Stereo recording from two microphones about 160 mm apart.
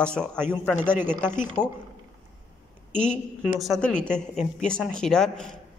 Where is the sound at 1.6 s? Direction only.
20° left (ahead or behind).